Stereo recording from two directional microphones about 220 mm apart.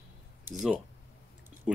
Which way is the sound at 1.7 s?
5° right (ahead or behind).